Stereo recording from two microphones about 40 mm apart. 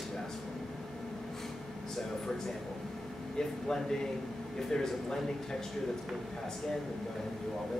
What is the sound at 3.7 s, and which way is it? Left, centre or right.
Speech, centre.